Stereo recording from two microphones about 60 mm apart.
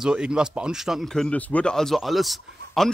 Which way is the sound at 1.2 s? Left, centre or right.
Centre.